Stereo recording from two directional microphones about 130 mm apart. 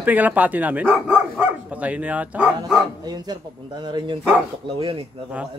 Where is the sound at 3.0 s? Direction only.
30° right (ahead or behind).